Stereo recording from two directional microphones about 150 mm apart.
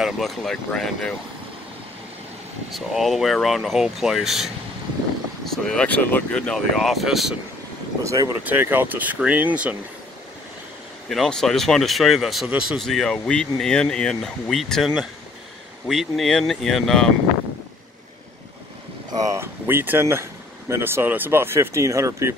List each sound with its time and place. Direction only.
0.0 s speech: centre (ahead or behind)
2.7 s speech: centre (ahead or behind)
8.0 s speech: 20° right (ahead or behind)
11.1 s speech: 5° left (ahead or behind)
19.3 s speech: 15° right (ahead or behind)